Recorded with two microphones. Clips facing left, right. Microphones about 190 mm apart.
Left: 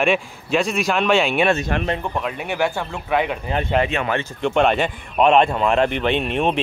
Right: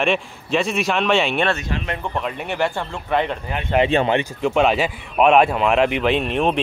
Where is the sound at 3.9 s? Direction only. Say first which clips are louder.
Right 5 dB; 30° right (ahead or behind).